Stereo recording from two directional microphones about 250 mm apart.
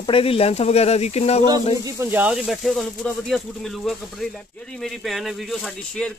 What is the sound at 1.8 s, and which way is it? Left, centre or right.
Speech, centre.